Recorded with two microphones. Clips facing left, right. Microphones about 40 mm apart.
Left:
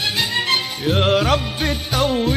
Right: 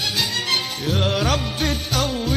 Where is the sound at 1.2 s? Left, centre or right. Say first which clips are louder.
Left 3 dB; centre.